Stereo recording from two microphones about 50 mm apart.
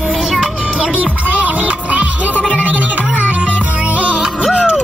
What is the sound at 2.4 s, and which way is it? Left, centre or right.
Music, left.